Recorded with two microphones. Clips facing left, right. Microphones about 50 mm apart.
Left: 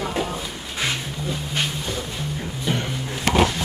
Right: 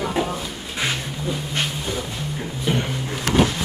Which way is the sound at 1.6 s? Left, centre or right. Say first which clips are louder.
Right 1 dB; centre.